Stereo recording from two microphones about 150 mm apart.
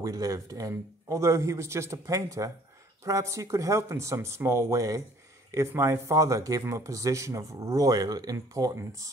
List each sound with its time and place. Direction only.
0.0 s speech: 20° right (ahead or behind)